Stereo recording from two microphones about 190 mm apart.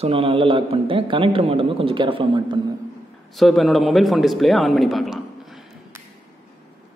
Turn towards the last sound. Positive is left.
turn(degrees=0)  # may be behind; listen again after turning